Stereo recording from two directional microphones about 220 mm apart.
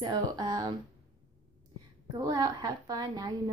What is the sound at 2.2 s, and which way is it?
A woman's voice, 15° right (ahead or behind).